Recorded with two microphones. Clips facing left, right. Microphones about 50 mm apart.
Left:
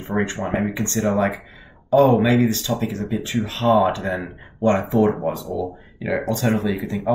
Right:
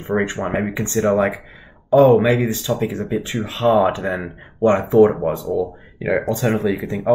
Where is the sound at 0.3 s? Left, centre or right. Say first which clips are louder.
Right 1 dB; centre.